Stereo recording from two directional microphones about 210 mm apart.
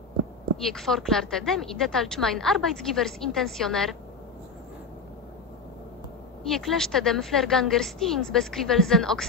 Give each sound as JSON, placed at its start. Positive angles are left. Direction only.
{"t": 0.7, "sound": "speech", "side_deg": 0}
{"t": 6.5, "sound": "speech", "side_deg": 0}